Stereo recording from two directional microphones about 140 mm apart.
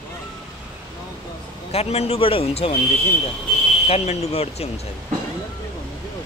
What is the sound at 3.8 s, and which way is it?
Speech, 45° left (ahead or behind).